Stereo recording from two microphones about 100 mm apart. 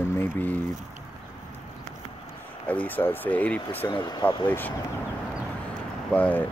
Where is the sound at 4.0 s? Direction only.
45° left (ahead or behind).